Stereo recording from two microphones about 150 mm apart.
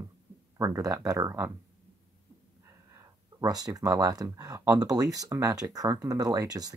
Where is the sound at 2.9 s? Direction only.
20° right (ahead or behind).